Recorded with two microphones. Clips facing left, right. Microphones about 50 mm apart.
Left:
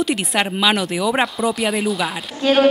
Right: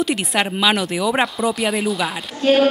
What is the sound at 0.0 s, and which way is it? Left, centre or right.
Speech, centre.